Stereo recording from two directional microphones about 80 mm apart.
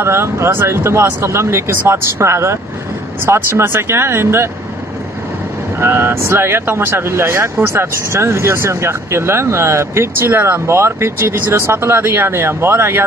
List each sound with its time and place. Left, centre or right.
0.0 s speech: right
5.8 s speech: right